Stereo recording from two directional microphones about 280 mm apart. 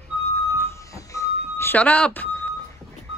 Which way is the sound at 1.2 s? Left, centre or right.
Centre.